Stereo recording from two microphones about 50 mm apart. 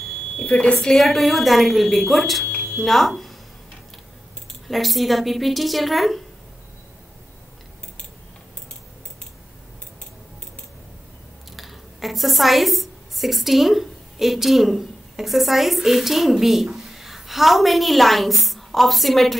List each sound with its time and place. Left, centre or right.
0.4 s a woman's voice: left
0.7 s speech: centre
4.6 s speech: centre
11.5 s a woman's voice: centre